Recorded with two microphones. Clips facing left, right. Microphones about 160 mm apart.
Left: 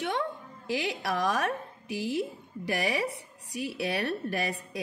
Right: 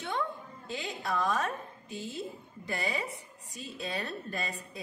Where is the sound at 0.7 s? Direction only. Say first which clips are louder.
Left 5 dB; 75° left (ahead or behind).